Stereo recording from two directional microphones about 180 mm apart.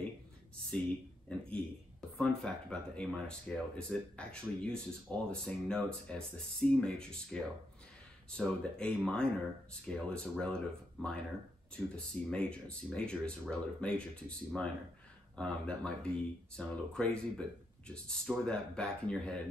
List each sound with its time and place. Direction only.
1.5 s speech: 5° left (ahead or behind)